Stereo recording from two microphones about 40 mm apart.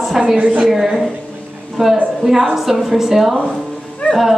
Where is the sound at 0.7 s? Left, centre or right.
Centre.